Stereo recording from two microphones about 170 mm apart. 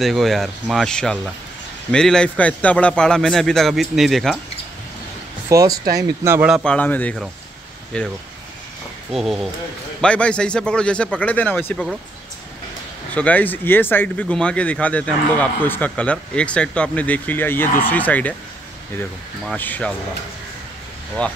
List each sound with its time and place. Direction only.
0.0 s a man's voice: centre (ahead or behind)
5.5 s speech: 20° right (ahead or behind)
6.5 s a man's voice: 5° left (ahead or behind)
9.1 s a man's voice: centre (ahead or behind)
13.1 s speech: 10° left (ahead or behind)
19.5 s speech: 10° left (ahead or behind)
21.2 s speech: 5° left (ahead or behind)